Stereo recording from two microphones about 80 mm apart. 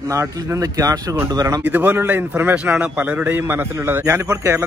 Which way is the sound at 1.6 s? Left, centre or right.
Right.